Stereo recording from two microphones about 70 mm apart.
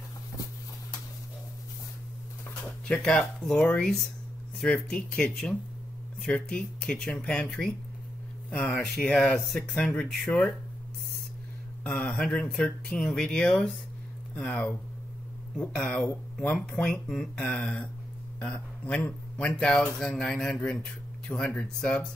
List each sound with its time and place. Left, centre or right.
2.9 s a man's voice: centre
8.7 s a man's voice: centre
11.8 s a man's voice: centre
21.3 s a man's voice: centre